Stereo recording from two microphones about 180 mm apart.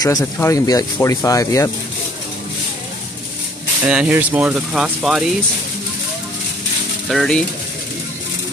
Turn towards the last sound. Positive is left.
turn(degrees=5)  # may be behind; listen again after turning